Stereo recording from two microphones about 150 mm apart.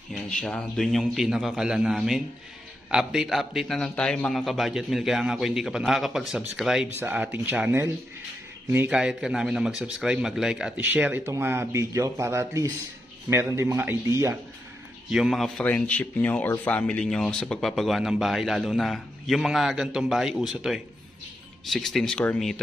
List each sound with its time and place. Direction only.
0.1 s speech: 5° left (ahead or behind)
6.9 s a man's voice: 10° right (ahead or behind)
15.0 s speech: centre (ahead or behind)